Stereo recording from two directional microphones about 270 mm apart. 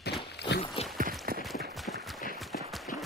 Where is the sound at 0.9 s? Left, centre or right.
Right.